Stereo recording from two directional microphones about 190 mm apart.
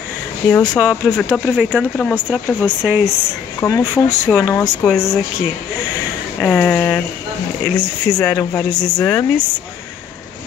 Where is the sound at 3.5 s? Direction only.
10° left (ahead or behind).